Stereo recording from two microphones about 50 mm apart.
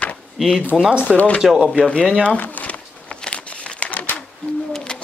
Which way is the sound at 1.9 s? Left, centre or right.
Centre.